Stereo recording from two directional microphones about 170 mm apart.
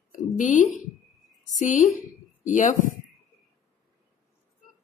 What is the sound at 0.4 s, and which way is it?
Speech, 50° left (ahead or behind).